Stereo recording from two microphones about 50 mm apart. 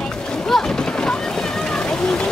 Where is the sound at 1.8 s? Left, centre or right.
Centre.